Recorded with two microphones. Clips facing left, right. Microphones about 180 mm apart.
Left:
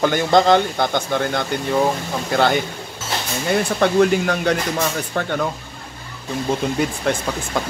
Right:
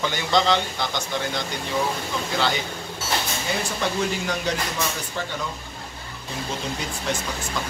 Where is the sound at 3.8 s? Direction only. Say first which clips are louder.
Left 12 dB; 60° left (ahead or behind).